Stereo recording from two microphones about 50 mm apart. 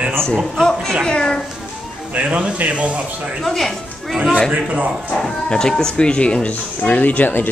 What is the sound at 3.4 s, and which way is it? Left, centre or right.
Speech, centre.